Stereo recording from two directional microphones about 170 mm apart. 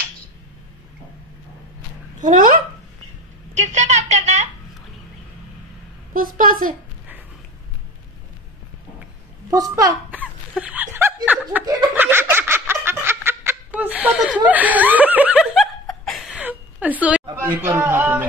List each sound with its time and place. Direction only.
2.1 s a woman's voice: 50° right (ahead or behind)
3.5 s a sound: 45° right (ahead or behind)
6.1 s a woman's voice: 55° right (ahead or behind)
9.5 s a child's voice: 20° right (ahead or behind)
10.6 s chuckle: 10° right (ahead or behind)
11.9 s a sound: 10° right (ahead or behind)
14.4 s laughter: 10° right (ahead or behind)
17.0 s speech: 10° right (ahead or behind)